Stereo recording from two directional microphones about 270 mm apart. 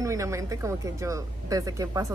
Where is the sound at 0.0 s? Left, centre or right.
Centre.